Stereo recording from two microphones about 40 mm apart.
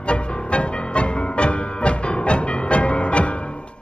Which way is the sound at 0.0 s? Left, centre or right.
Left.